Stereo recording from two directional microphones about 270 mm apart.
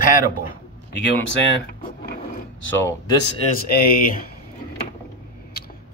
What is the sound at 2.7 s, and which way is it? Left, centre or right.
Speech, centre.